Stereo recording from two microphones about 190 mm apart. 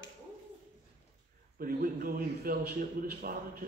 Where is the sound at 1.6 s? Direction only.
50° right (ahead or behind).